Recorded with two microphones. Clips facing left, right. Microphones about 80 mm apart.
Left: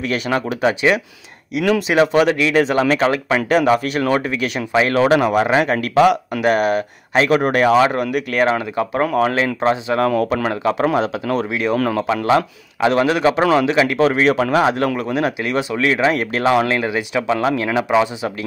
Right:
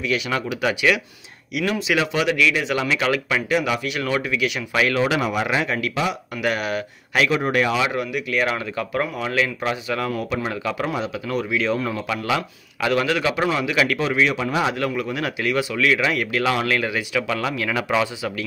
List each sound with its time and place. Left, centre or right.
0.0 s speech: left
6.4 s speech: left
7.2 s speech: left
8.5 s speech: left
9.0 s speech: left
9.6 s speech: left
10.0 s speech: left
10.5 s speech: left
10.9 s speech: left
11.7 s speech: left
12.8 s speech: left
13.9 s speech: left
15.0 s speech: left
17.6 s speech: left